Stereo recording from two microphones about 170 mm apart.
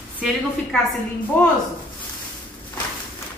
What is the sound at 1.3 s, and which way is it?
Speech, 15° left (ahead or behind).